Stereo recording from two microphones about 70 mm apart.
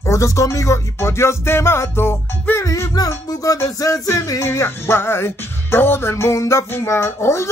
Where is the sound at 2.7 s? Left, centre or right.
Left.